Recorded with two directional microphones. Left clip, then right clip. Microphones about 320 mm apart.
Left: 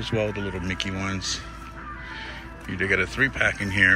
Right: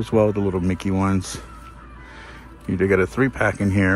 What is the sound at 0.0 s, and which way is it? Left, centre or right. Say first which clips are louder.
Speech: right 8 dB; centre.